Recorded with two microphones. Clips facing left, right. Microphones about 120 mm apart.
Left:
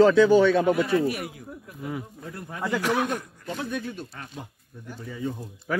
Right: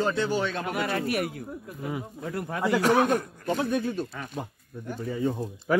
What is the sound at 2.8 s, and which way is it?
A man's voice, 45° right (ahead or behind).